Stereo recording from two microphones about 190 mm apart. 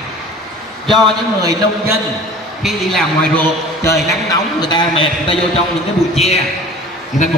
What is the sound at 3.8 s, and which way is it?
A man's voice, 20° left (ahead or behind).